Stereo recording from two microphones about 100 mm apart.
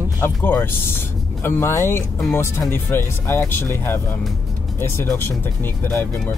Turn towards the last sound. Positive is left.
turn(degrees=20)  # may be behind; listen again after turning